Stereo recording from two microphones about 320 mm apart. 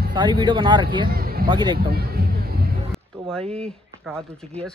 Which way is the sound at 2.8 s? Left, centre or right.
Centre.